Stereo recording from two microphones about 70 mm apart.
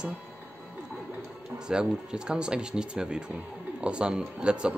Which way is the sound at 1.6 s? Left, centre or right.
Centre.